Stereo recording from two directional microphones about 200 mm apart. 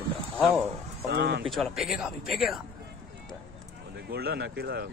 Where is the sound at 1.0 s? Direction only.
55° right (ahead or behind).